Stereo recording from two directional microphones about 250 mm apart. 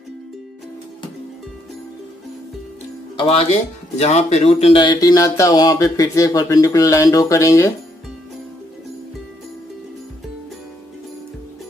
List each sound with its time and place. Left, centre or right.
3.2 s speech: left